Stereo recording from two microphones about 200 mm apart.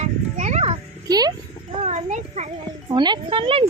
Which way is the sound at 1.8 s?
35° right (ahead or behind).